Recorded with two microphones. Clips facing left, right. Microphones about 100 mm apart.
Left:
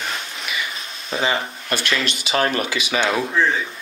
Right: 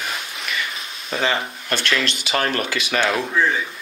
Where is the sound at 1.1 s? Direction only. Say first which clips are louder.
Even; 5° left (ahead or behind).